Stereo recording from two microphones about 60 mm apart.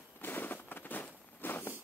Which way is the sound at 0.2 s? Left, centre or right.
Left.